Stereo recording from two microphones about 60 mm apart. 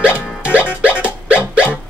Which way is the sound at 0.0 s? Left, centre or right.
Centre.